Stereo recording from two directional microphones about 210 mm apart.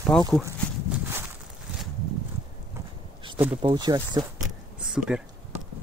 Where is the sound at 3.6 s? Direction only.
20° right (ahead or behind).